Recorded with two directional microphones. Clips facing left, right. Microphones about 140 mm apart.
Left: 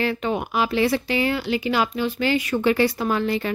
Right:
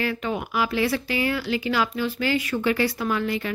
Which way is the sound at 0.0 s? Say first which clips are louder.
Left 3 dB; 25° left (ahead or behind).